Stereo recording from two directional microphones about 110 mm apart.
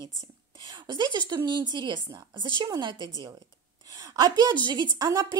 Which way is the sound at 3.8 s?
30° right (ahead or behind).